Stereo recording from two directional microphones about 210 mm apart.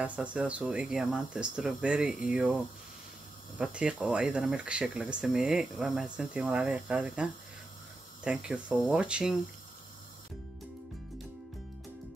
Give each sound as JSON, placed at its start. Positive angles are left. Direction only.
{"t": 0.0, "sound": "speech", "side_deg": -5}